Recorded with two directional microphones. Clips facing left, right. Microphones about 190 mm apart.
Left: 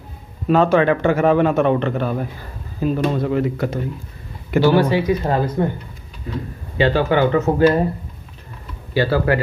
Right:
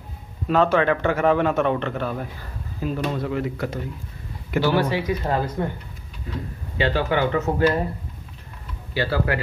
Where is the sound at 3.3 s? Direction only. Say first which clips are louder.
Left 6 dB; 35° left (ahead or behind).